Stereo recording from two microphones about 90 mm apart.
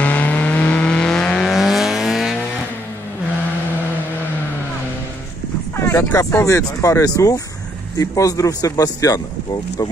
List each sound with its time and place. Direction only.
0.0 s vehicle: 15° left (ahead or behind); by 2.3 s 5° right (ahead or behind)
5.8 s speech: 30° left (ahead or behind)